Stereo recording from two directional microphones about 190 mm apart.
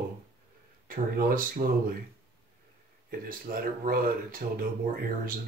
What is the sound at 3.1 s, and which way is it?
Speech, 50° right (ahead or behind).